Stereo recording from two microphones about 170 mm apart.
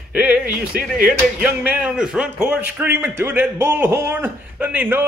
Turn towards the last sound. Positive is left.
turn(degrees=-10)  # may be behind; listen again after turning